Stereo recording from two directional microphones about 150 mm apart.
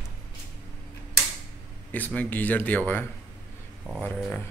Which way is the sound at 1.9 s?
10° left (ahead or behind).